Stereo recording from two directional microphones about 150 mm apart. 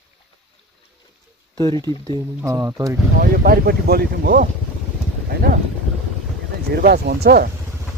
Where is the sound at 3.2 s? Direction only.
75° right (ahead or behind).